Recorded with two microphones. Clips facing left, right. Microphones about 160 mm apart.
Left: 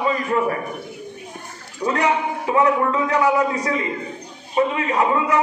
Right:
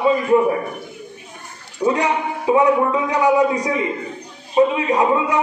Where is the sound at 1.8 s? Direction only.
20° right (ahead or behind).